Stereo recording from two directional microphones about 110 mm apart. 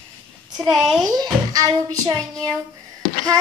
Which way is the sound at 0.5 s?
5° right (ahead or behind).